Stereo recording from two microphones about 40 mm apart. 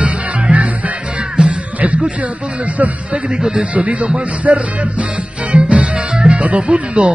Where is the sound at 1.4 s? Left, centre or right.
Right.